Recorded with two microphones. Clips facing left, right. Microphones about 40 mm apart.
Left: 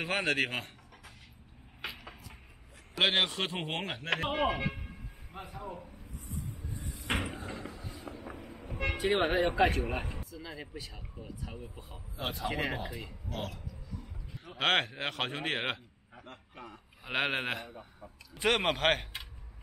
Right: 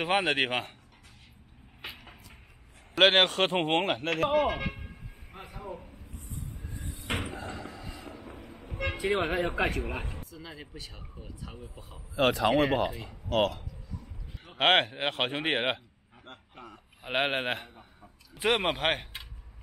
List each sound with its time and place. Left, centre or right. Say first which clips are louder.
0.1 s a man's voice: right 4 dB; right
0.4 s speech: right 4 dB; right
3.0 s speech: right 7 dB; right
7.2 s a sound: right 1 dB; right
8.6 s speech: right 1 dB; right
10.0 s speech: even; centre
12.2 s speech: right 10 dB; right
14.4 s a sound: right 5 dB; right
14.7 s speech: right 5 dB; right
17.0 s a man's voice: right 3 dB; centre
18.0 s speech: right 2 dB; centre